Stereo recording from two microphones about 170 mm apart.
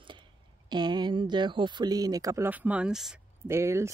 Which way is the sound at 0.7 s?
25° right (ahead or behind).